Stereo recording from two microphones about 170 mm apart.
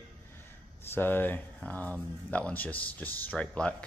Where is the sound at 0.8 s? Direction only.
10° left (ahead or behind).